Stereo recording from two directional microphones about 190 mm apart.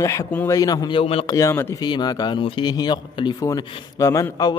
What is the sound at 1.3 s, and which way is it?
Speech, 15° left (ahead or behind).